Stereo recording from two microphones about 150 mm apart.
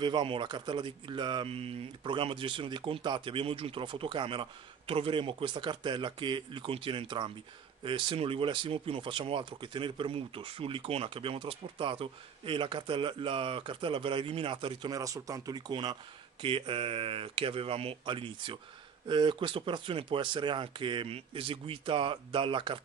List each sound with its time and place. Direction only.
0.0 s speech: 35° right (ahead or behind)